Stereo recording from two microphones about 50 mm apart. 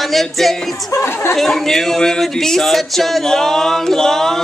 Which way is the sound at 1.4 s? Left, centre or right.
Centre.